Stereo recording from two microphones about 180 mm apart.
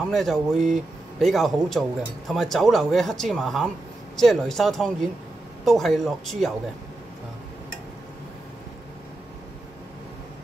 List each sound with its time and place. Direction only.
0.1 s speech: centre (ahead or behind)